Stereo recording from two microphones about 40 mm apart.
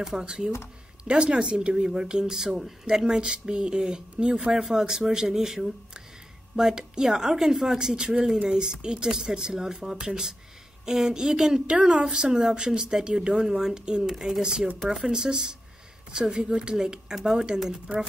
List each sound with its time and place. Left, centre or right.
0.0 s a woman's voice: centre